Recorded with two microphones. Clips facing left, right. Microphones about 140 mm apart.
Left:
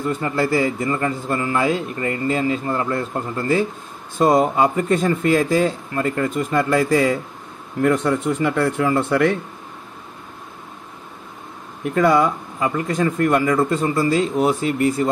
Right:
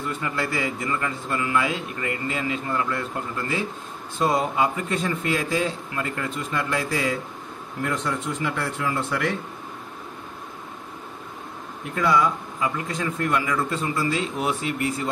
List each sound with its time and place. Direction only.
0.1 s a man's voice: 35° left (ahead or behind); by 9.3 s 55° left (ahead or behind)
11.9 s speech: 55° left (ahead or behind)